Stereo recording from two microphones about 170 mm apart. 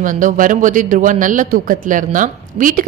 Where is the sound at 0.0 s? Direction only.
50° right (ahead or behind).